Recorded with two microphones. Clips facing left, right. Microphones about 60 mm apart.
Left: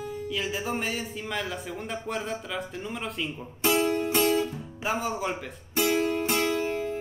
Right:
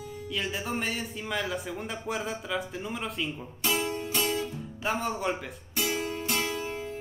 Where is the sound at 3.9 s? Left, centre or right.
Left.